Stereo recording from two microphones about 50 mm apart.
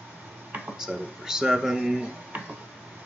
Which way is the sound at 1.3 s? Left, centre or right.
Centre.